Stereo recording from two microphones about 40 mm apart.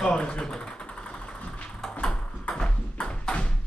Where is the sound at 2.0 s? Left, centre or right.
Left.